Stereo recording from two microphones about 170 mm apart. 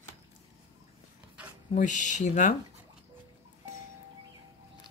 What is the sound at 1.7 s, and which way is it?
Speech, 45° left (ahead or behind).